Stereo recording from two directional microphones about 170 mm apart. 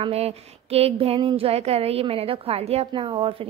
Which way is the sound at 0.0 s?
35° right (ahead or behind).